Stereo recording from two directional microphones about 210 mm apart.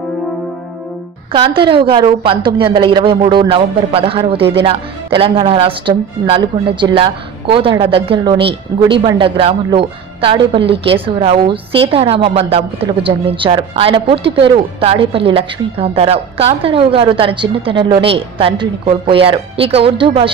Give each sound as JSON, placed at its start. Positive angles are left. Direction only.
{"t": 1.3, "sound": "a woman's voice", "side_deg": -25}